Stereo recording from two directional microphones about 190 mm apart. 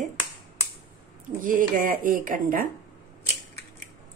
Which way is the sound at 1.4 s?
45° right (ahead or behind).